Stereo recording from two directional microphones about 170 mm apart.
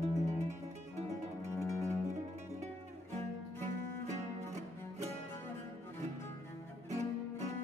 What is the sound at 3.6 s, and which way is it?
Music, 45° right (ahead or behind).